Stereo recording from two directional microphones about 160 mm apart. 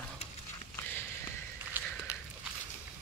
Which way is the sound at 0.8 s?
15° left (ahead or behind).